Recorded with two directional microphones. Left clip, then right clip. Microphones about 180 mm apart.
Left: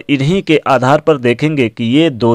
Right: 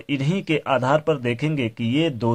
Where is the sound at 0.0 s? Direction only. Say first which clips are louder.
Left 11 dB; 40° left (ahead or behind).